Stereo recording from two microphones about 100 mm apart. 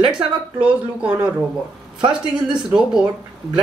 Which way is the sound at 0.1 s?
10° right (ahead or behind).